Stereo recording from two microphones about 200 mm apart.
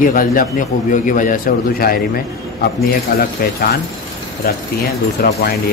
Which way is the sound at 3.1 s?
45° left (ahead or behind).